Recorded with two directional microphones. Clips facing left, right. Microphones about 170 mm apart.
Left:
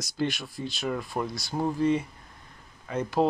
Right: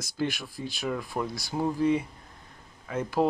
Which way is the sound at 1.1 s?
10° left (ahead or behind).